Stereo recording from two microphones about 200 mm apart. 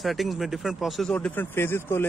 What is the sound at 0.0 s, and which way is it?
Speech, centre (ahead or behind).